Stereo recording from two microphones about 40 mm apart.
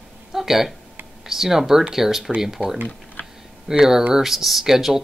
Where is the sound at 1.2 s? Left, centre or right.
Centre.